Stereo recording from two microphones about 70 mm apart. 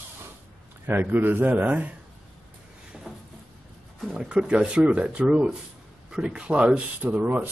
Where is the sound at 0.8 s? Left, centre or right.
Right.